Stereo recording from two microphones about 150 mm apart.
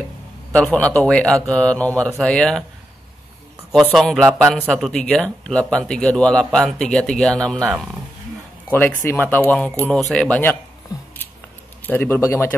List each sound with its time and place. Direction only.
0.5 s a man's voice: 10° left (ahead or behind)
3.9 s speech: centre (ahead or behind)
7.7 s speech: 5° right (ahead or behind)
8.6 s a man's voice: 15° left (ahead or behind)
11.8 s a man's voice: 15° left (ahead or behind)